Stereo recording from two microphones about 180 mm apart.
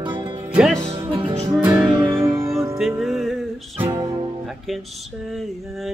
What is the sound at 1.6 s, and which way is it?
Music, 10° right (ahead or behind).